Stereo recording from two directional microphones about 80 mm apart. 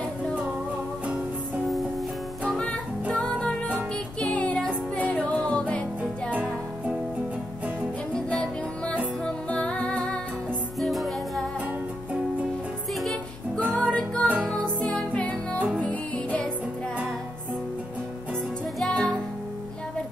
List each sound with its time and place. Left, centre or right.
2.6 s music: centre
8.1 s music: centre
10.8 s music: centre
13.7 s music: centre
15.6 s music: centre
15.9 s music: centre
18.8 s music: centre